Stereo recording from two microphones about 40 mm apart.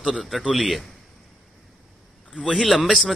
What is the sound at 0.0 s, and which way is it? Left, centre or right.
Speech, centre.